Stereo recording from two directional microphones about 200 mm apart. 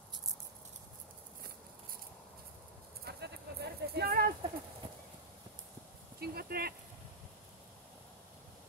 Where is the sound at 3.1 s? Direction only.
55° right (ahead or behind).